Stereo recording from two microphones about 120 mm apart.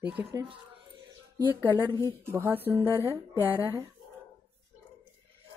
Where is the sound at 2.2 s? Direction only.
20° right (ahead or behind).